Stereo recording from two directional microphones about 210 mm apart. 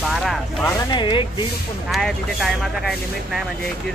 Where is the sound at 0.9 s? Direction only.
20° left (ahead or behind).